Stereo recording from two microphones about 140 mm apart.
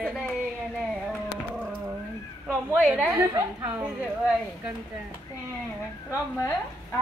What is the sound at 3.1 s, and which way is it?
Speech, 20° right (ahead or behind).